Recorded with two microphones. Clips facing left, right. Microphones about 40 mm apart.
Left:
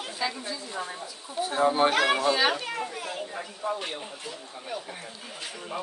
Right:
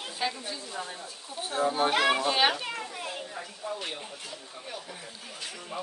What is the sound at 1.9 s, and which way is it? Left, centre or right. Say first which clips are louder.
Speech: left 1 dB; centre.